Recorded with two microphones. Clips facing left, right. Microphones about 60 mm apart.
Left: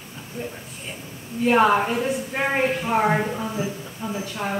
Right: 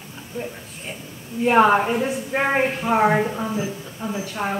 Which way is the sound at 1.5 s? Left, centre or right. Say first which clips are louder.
Right 2 dB; centre.